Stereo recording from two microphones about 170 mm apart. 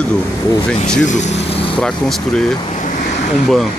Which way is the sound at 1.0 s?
45° left (ahead or behind).